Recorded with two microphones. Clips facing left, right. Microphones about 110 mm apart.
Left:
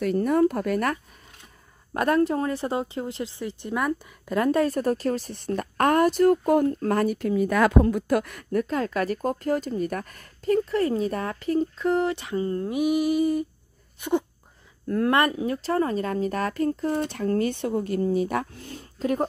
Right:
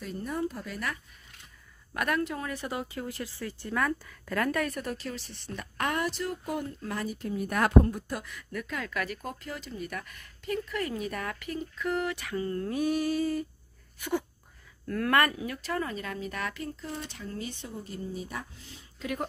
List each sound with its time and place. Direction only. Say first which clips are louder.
0.0 s speech: left 12 dB; 70° left (ahead or behind); by 0.9 s 55° left (ahead or behind)
2.0 s a woman's voice: left 9 dB; 35° left (ahead or behind); by 8.5 s 60° left (ahead or behind)
8.5 s a woman's voice: left 9 dB; 35° left (ahead or behind); by 18.9 s 55° left (ahead or behind)
18.9 s speech: left 9 dB; 35° left (ahead or behind)